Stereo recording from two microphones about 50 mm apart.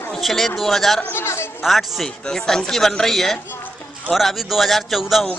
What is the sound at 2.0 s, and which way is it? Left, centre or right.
A woman's voice, centre.